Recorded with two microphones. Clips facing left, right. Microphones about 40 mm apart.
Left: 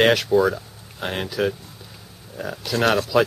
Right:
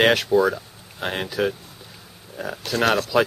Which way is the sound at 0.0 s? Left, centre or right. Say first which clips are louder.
Even; centre.